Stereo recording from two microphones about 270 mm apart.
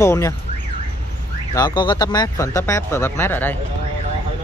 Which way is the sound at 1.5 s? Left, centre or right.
Centre.